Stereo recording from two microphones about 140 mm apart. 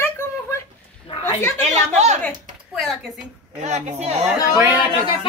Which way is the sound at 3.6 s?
55° right (ahead or behind).